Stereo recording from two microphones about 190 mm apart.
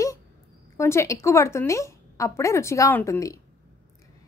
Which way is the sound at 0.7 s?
15° left (ahead or behind).